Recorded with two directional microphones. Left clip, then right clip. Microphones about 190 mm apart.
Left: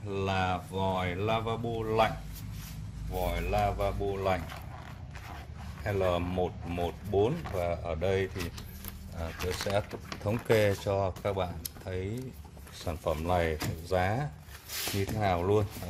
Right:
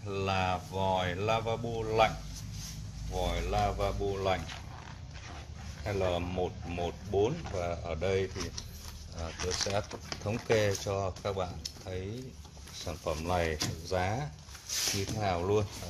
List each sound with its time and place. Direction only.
0.1 s speech: centre (ahead or behind)
3.2 s speech: 5° left (ahead or behind)
5.9 s speech: 15° left (ahead or behind)
12.8 s speech: 15° left (ahead or behind)